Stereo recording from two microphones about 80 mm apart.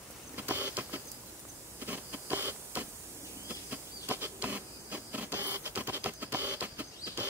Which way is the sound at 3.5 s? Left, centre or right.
Right.